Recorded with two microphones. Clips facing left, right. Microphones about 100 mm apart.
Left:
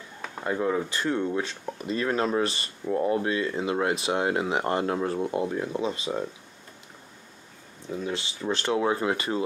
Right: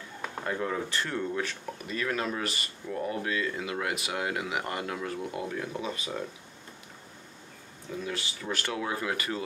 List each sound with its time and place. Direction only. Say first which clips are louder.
0.4 s speech: left 5 dB; 20° left (ahead or behind)
8.0 s speech: left 4 dB; 25° left (ahead or behind)